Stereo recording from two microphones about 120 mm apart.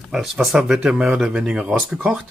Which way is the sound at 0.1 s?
Centre (ahead or behind).